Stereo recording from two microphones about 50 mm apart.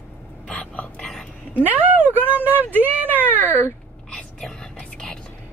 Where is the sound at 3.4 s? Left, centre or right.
Left.